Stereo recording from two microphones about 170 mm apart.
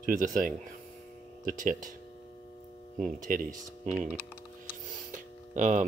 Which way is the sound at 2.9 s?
50° right (ahead or behind).